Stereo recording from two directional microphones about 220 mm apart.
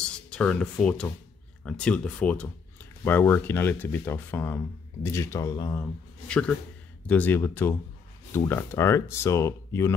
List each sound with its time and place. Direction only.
0.3 s speech: 5° left (ahead or behind)